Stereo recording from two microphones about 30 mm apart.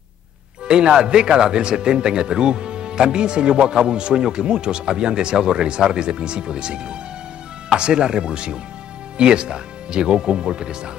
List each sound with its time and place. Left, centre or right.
0.7 s speech: right